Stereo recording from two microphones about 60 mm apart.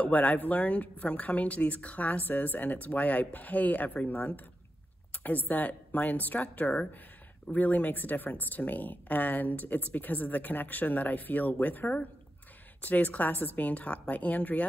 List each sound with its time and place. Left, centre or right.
0.0 s speech: left